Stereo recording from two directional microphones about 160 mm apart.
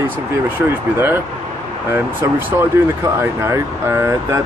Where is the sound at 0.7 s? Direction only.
15° right (ahead or behind).